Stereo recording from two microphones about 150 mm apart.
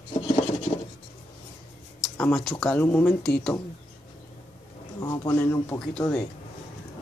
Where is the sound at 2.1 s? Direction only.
5° left (ahead or behind).